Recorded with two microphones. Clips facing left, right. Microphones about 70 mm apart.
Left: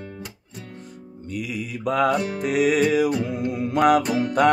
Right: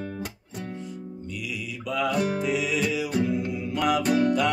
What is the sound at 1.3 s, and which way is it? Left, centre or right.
Music, left.